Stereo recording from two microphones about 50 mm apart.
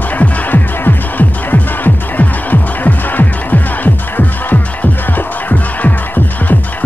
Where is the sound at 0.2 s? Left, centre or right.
Left.